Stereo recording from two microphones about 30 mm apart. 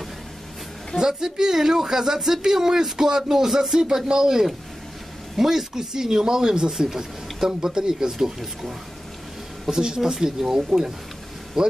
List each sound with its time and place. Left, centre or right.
0.9 s speech: centre
9.7 s speech: right